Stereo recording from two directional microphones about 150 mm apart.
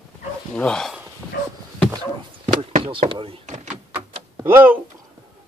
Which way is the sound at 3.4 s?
50° right (ahead or behind).